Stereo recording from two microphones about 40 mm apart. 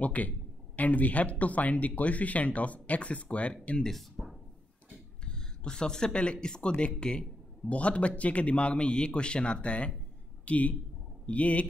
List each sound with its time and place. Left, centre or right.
0.0 s speech: left
4.2 s music: centre
5.2 s speech: left